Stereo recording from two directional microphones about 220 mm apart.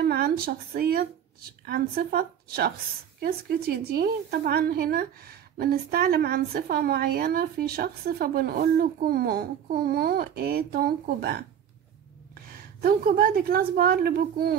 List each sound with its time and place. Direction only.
0.0 s a woman's voice: 45° right (ahead or behind)
12.8 s a woman's voice: 40° right (ahead or behind)